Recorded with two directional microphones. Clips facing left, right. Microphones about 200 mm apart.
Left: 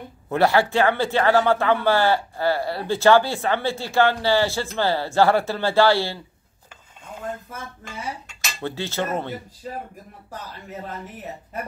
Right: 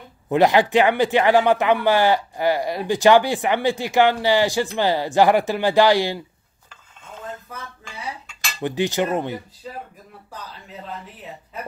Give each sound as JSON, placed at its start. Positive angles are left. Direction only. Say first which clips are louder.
{"t": 0.3, "sound": "speech", "louder": "right 3 dB", "side_deg": -15}
{"t": 8.6, "sound": "speech", "louder": "right 5 dB", "side_deg": -15}